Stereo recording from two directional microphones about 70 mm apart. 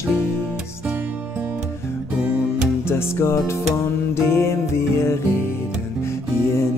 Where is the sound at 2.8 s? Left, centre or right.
Left.